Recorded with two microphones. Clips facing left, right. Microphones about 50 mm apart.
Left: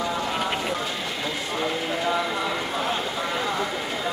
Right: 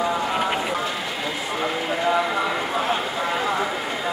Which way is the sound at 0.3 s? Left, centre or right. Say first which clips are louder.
Right 3 dB; centre.